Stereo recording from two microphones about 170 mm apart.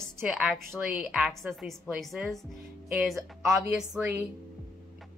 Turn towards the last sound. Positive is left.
turn(degrees=-5)  # may be behind; listen again after turning